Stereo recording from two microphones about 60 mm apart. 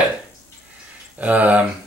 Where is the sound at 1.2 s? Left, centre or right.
Right.